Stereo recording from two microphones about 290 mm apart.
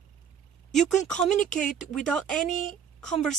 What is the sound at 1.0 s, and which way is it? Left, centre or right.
A woman's voice, centre.